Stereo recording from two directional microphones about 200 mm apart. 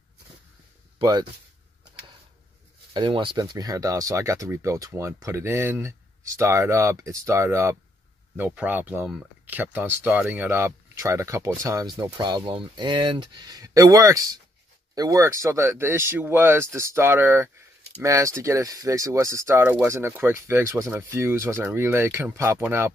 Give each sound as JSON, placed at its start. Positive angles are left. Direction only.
{"t": 0.9, "sound": "speech", "side_deg": -20}
{"t": 2.9, "sound": "speech", "side_deg": -25}